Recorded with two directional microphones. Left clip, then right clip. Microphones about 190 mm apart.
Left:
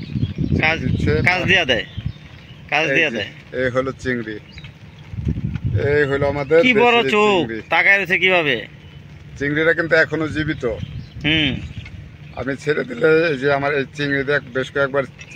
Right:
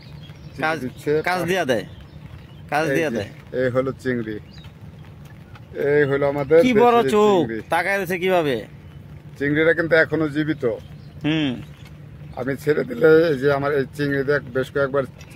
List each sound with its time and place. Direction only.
0.6 s speech: 15° right (ahead or behind)
5.8 s speech: 5° right (ahead or behind)